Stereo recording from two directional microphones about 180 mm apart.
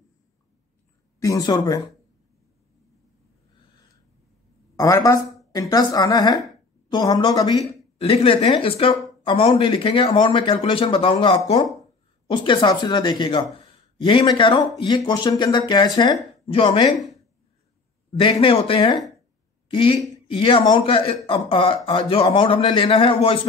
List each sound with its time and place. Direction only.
1.2 s speech: 20° left (ahead or behind)
4.7 s speech: 20° left (ahead or behind)
18.2 s speech: 30° left (ahead or behind)